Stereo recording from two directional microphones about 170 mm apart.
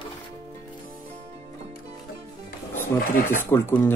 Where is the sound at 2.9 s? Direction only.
50° left (ahead or behind).